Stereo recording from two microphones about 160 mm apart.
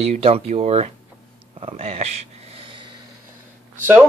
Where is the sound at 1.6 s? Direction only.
40° right (ahead or behind).